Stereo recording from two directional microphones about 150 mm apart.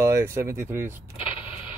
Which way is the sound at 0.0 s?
20° right (ahead or behind).